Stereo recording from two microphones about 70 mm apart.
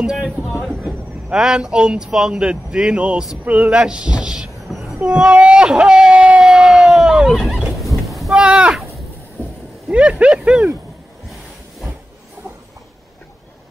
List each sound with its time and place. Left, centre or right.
0.8 s speech: centre
5.0 s speech: centre
8.1 s a sound: centre
8.4 s speech: centre
9.8 s speech: centre